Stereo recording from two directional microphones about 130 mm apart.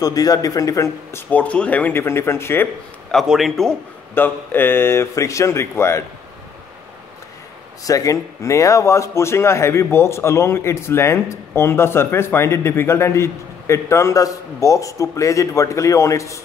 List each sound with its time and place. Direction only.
0.0 s speech: 30° left (ahead or behind)
1.3 s speech: 10° left (ahead or behind)
3.1 s a man's voice: centre (ahead or behind)
4.1 s speech: 15° left (ahead or behind)
7.8 s speech: 25° left (ahead or behind)